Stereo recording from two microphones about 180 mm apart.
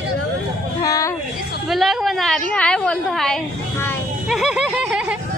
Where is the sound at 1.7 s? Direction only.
Centre (ahead or behind).